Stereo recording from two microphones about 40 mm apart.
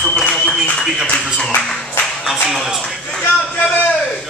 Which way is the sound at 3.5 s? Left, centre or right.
Left.